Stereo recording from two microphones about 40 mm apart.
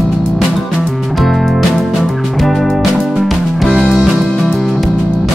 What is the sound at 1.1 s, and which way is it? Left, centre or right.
Music, centre.